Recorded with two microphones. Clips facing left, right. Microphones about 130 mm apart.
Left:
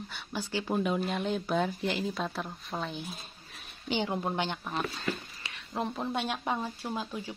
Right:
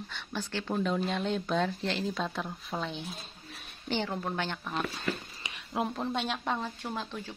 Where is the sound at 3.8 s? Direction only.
15° left (ahead or behind).